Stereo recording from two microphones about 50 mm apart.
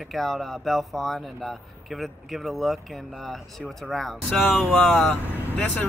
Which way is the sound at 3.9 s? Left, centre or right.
Centre.